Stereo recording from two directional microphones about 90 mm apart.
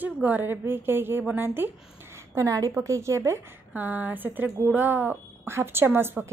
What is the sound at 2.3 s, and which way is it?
A woman's voice, 35° right (ahead or behind).